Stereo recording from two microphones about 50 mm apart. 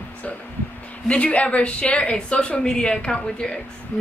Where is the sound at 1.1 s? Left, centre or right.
Left.